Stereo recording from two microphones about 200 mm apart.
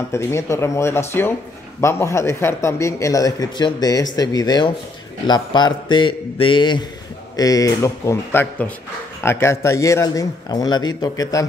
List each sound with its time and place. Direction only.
0.1 s a man's voice: 15° left (ahead or behind)